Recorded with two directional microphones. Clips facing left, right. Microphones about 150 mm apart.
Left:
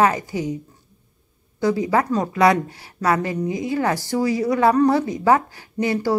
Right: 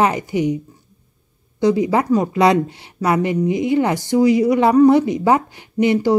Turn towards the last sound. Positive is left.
turn(degrees=-20)  # may be behind; listen again after turning